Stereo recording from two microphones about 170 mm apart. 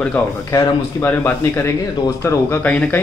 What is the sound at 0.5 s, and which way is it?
A man's voice, 15° left (ahead or behind).